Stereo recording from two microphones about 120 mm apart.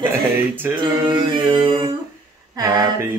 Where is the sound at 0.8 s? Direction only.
40° right (ahead or behind).